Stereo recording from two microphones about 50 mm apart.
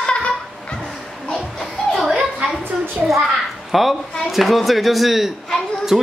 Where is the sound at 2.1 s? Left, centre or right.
Centre.